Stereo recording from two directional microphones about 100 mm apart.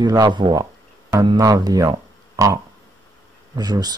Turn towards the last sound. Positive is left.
turn(degrees=-40)  # may be behind; listen again after turning